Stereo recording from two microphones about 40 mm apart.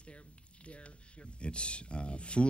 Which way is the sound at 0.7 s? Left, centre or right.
Left.